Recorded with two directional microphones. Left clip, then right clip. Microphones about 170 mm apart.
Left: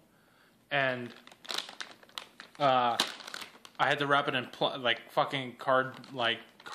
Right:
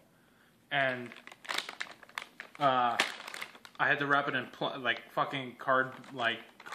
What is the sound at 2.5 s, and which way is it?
Speech, 50° left (ahead or behind).